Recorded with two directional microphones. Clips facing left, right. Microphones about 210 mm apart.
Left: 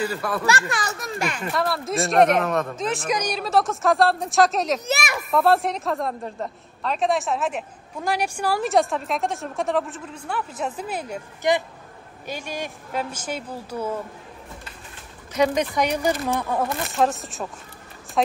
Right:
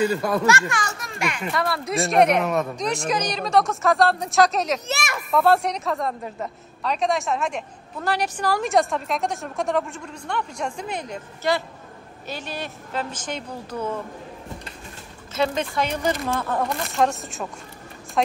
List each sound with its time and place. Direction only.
0.0 s speech: 20° right (ahead or behind)
0.5 s a child's voice: 35° left (ahead or behind)
1.5 s a woman's voice: centre (ahead or behind)
11.4 s speech: 15° left (ahead or behind)
15.3 s a woman's voice: 15° left (ahead or behind)